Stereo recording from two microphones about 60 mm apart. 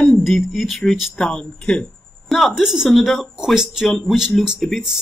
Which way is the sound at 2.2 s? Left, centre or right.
Centre.